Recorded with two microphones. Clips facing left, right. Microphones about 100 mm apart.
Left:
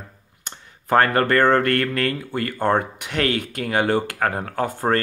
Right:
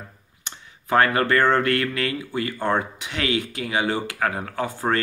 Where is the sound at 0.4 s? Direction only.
50° left (ahead or behind).